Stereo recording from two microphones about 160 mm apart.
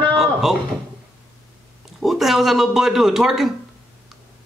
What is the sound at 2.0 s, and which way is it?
A man's voice, centre (ahead or behind).